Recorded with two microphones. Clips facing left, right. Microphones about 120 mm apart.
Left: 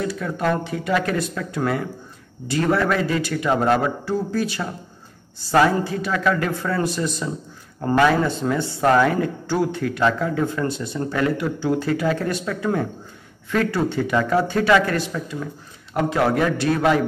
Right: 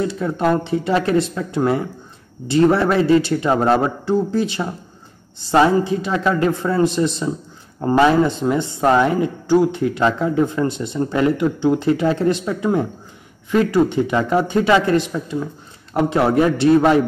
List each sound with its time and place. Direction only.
0.0 s speech: 25° right (ahead or behind)